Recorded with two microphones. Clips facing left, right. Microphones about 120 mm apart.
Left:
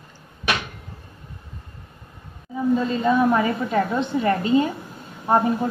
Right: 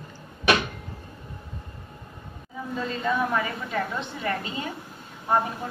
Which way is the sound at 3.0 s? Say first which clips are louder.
Left 6 dB; 35° left (ahead or behind).